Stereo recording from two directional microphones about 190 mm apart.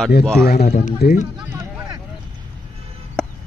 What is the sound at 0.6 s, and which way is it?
Speech, 40° left (ahead or behind).